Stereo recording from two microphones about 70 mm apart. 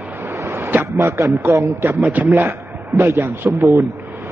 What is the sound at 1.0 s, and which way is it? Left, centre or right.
Speech, right.